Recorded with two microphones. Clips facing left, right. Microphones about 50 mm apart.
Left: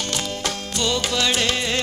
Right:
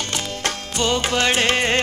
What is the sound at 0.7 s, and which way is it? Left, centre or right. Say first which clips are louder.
Music: right 3 dB; right.